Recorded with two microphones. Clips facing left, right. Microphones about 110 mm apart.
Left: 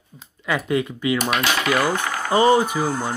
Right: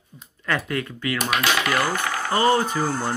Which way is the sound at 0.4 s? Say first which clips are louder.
Left 4 dB; 15° left (ahead or behind).